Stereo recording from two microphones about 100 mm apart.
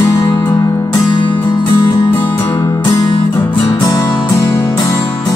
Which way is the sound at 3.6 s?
40° left (ahead or behind).